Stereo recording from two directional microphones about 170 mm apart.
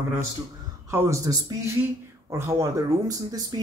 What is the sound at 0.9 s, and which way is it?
Speech, 15° right (ahead or behind).